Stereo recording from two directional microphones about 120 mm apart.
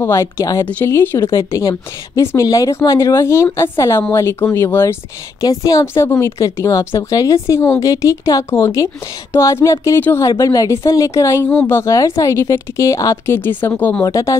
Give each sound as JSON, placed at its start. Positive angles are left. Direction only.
{"t": 0.0, "sound": "a woman's voice", "side_deg": 25}
{"t": 5.4, "sound": "a woman's voice", "side_deg": 30}
{"t": 14.0, "sound": "a woman's voice", "side_deg": 25}